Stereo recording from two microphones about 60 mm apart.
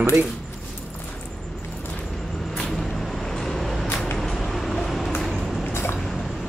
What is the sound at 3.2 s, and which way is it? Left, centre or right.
Vehicle, centre.